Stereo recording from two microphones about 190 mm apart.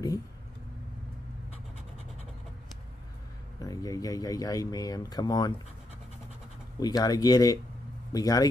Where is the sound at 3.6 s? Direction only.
20° left (ahead or behind).